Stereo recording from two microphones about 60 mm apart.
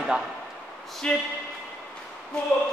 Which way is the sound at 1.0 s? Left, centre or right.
Centre.